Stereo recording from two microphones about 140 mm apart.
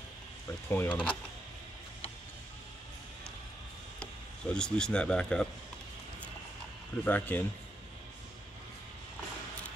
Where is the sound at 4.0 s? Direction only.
5° left (ahead or behind).